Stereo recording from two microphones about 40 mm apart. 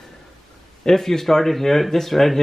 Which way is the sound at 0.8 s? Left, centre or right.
Centre.